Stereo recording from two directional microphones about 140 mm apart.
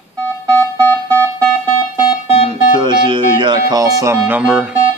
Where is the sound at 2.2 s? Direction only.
45° left (ahead or behind).